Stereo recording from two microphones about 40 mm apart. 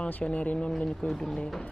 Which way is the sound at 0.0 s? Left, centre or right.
Left.